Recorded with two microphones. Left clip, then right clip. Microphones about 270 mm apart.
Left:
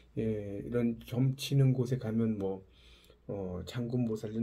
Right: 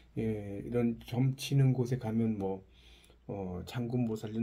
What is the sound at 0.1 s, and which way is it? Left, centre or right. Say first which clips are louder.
Speech: left 2 dB; centre.